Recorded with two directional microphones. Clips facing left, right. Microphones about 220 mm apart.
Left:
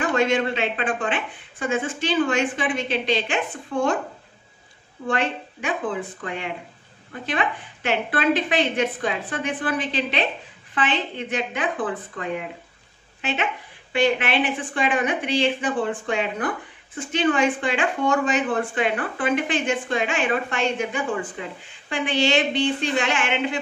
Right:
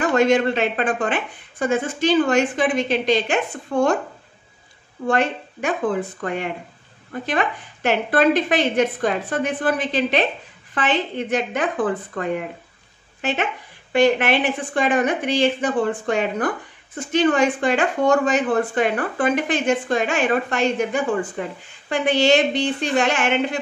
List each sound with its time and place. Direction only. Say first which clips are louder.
0.0 s speech: right 4 dB; 40° right (ahead or behind)
5.0 s speech: right 4 dB; 45° right (ahead or behind)
13.9 s speech: right 4 dB; 45° right (ahead or behind)